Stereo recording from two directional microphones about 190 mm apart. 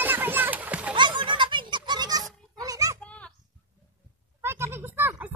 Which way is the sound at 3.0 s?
5° left (ahead or behind).